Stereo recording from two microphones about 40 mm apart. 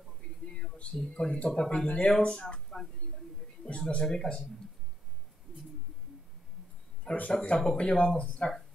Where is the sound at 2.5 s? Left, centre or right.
Centre.